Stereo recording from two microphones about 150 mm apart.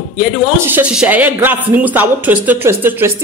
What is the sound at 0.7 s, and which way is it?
Speech, 5° right (ahead or behind).